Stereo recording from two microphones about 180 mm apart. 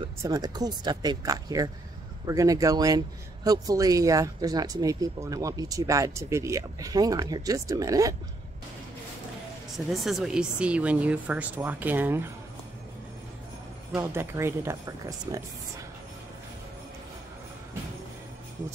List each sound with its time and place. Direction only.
0.2 s speech: 20° right (ahead or behind)
9.8 s speech: centre (ahead or behind)
13.9 s speech: 15° right (ahead or behind)